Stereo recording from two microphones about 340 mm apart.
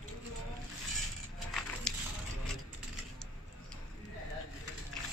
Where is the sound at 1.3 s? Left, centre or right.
Centre.